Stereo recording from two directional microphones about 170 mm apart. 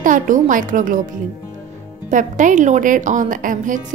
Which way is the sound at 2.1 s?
50° right (ahead or behind).